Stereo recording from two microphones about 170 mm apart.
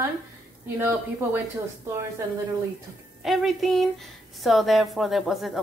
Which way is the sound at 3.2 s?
Centre (ahead or behind).